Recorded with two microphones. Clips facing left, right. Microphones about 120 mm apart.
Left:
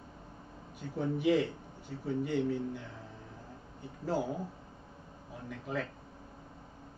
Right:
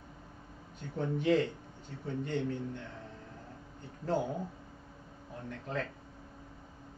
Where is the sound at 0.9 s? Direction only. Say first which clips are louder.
Even; 10° left (ahead or behind).